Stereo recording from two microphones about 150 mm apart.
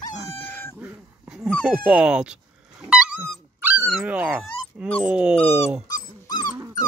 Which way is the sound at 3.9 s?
5° right (ahead or behind).